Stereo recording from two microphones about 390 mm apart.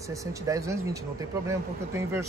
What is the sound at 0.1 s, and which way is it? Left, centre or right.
A man's voice, centre.